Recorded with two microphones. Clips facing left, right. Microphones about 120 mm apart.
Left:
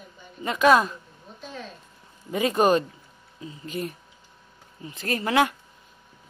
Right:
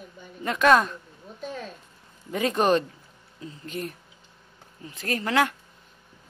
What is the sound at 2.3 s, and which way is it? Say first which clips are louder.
Speech: left 2 dB; 5° left (ahead or behind).